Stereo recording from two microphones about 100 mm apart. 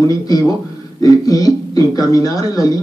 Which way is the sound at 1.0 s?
40° left (ahead or behind).